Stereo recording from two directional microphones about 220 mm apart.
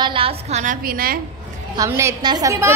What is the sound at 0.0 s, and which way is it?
A woman's voice, 25° right (ahead or behind).